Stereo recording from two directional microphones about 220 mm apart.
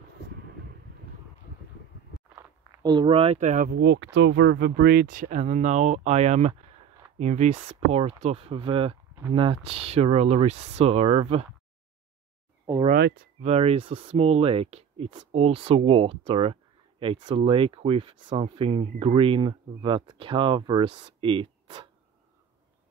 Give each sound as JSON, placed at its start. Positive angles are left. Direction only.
{"t": 2.3, "sound": "speech", "side_deg": -15}
{"t": 13.4, "sound": "speech", "side_deg": -30}